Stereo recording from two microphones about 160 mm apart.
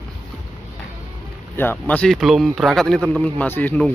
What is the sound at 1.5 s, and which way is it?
Speech, 10° left (ahead or behind).